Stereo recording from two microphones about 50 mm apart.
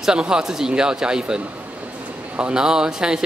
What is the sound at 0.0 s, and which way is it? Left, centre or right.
A man's voice, centre.